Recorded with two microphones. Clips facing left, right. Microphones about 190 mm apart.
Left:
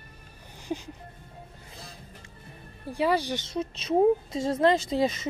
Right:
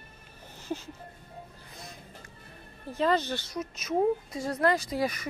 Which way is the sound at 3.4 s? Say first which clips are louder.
Left 4 dB; 30° left (ahead or behind).